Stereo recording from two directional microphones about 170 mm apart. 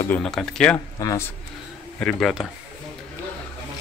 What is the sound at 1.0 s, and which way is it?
Speech, 20° left (ahead or behind).